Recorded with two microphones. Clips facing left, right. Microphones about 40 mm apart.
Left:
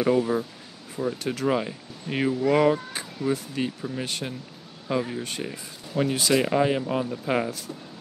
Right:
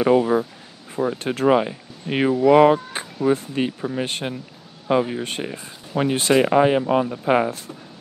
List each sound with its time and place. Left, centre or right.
0.0 s speech: right
6.1 s speech: right
6.4 s speech: right